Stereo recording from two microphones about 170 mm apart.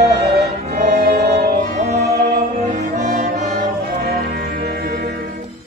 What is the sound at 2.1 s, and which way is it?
Music, 65° right (ahead or behind).